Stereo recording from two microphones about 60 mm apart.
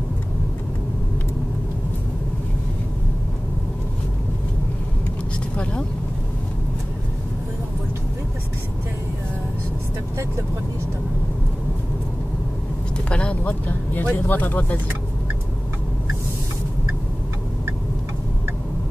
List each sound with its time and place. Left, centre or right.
5.6 s speech: centre
12.9 s vehicle: centre
13.4 s vehicle: left
14.2 s speech: left